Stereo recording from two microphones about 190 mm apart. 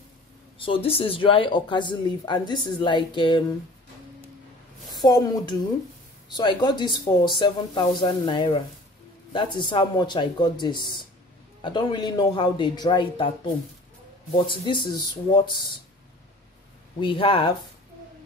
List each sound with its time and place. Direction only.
0.6 s speech: 30° left (ahead or behind)
4.9 s speech: 20° left (ahead or behind)
14.3 s speech: 25° left (ahead or behind)
17.0 s speech: 25° left (ahead or behind)